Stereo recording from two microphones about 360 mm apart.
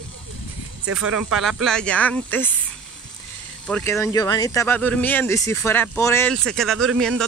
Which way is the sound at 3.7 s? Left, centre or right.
Centre.